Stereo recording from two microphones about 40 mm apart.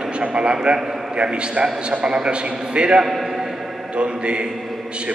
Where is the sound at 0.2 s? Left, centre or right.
Right.